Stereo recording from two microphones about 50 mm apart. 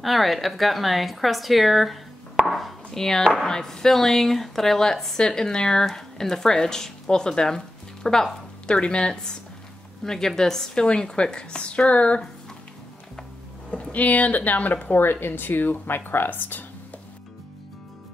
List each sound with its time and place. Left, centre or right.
0.0 s a woman's voice: centre
2.4 s chopping: centre
3.4 s speech: centre
13.7 s speech: left